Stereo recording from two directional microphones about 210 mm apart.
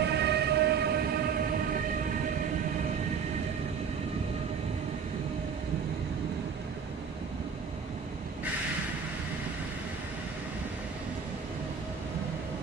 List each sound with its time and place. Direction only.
0.0 s train: 50° right (ahead or behind)